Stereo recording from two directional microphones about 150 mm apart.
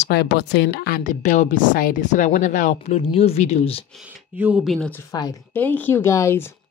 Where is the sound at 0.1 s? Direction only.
90° left; by 3.8 s 40° left (ahead or behind).